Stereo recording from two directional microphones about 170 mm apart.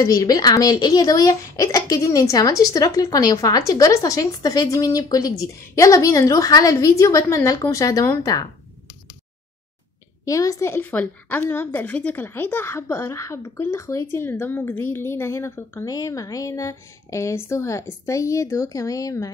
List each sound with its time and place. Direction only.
0.0 s speech: 20° left (ahead or behind)
10.2 s a woman's voice: 20° left (ahead or behind)